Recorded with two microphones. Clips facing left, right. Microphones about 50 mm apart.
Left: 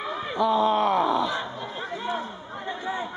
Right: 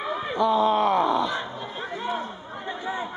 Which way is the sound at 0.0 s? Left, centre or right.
Centre.